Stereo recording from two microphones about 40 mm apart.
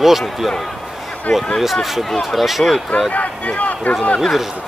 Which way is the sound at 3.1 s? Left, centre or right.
Left.